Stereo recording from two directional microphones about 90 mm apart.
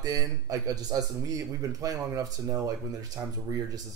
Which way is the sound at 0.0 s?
45° right (ahead or behind).